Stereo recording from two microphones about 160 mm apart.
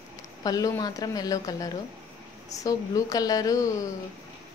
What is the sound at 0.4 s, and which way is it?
A woman's voice, 25° left (ahead or behind).